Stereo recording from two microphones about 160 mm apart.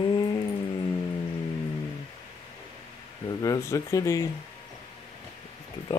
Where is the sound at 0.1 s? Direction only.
25° left (ahead or behind).